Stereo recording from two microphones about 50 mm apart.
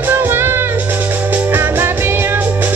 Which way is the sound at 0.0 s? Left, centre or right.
Right.